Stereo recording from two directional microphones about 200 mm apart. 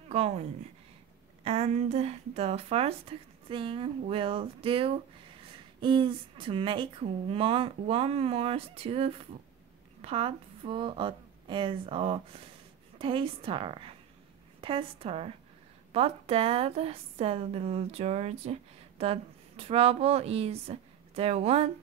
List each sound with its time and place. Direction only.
0.1 s a woman's voice: 30° right (ahead or behind)